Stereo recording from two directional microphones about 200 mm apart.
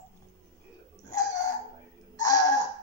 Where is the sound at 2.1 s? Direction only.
20° left (ahead or behind).